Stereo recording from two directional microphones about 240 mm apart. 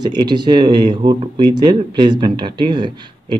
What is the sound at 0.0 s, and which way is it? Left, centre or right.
Speech, centre.